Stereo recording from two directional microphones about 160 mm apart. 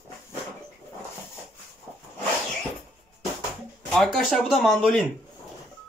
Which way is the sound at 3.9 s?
Centre (ahead or behind).